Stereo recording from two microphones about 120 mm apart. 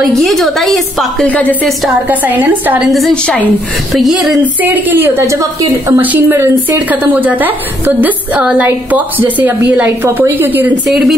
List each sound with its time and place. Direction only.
0.0 s a woman's voice: centre (ahead or behind)
1.3 s a woman's voice: 10° left (ahead or behind)
2.0 s a woman's voice: 15° right (ahead or behind)
2.9 s a woman's voice: 5° left (ahead or behind)
4.6 s a woman's voice: 15° right (ahead or behind)
10.9 s a woman's voice: centre (ahead or behind)